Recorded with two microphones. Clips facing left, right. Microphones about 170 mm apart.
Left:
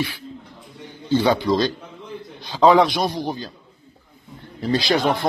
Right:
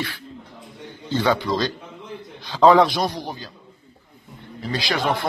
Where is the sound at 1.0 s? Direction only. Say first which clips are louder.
Left 3 dB; 15° left (ahead or behind).